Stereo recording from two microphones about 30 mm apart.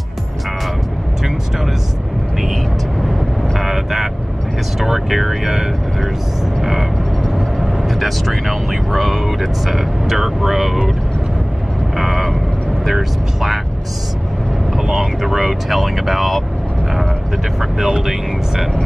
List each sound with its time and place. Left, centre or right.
3.0 s vehicle: centre
6.6 s frog: centre
8.0 s speech: centre
12.0 s vehicle: centre
12.8 s speech: centre
14.8 s speech: centre
15.7 s speech: centre
17.6 s speech: centre